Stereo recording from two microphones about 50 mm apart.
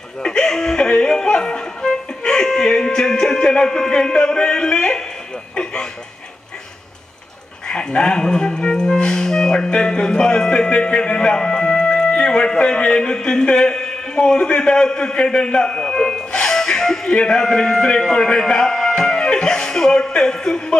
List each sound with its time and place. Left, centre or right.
0.2 s music: centre
7.6 s speech: centre
17.2 s music: centre